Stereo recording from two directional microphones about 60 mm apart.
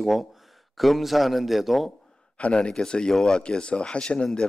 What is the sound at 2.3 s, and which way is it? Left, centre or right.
Speech, centre.